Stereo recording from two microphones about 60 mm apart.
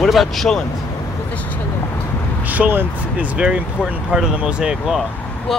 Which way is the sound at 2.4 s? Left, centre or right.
Right.